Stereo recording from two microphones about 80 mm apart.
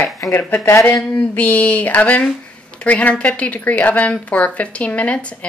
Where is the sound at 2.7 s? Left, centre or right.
Centre.